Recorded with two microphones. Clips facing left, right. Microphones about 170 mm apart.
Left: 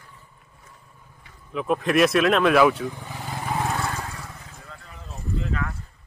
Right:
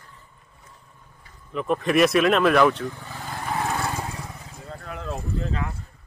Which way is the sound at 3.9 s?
20° right (ahead or behind).